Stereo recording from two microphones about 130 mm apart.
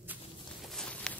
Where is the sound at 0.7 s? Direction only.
5° left (ahead or behind).